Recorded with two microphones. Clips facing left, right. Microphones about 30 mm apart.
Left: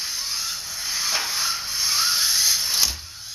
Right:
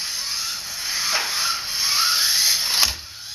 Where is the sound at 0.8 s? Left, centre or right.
Centre.